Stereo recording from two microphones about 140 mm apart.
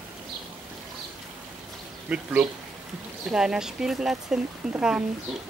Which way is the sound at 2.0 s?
10° right (ahead or behind).